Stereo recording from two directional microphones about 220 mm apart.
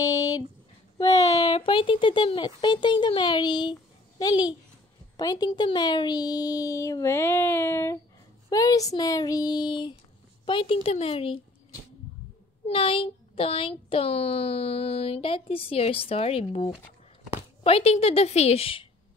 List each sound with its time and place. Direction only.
0.0 s a sound: 15° left (ahead or behind)
0.9 s a child's voice: 15° left (ahead or behind)
12.6 s speech: 25° left (ahead or behind)